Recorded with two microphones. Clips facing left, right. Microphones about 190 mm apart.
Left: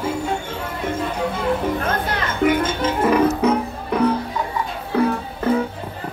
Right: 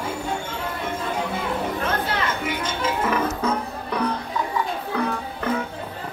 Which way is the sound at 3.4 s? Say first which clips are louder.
Left 6 dB; 20° left (ahead or behind).